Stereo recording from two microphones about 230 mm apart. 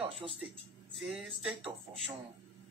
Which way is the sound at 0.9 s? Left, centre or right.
Centre.